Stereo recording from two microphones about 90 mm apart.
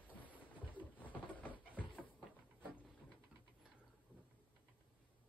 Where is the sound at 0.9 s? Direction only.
20° left (ahead or behind).